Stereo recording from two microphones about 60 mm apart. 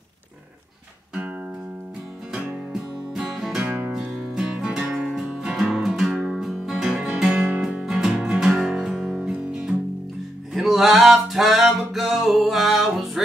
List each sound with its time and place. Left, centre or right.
2.7 s music: centre
3.6 s music: right
3.9 s music: centre
10.5 s music: centre